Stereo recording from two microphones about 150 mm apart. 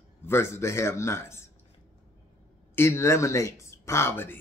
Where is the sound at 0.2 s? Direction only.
15° left (ahead or behind).